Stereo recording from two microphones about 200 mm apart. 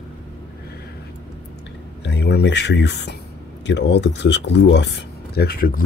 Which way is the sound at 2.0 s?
55° left (ahead or behind).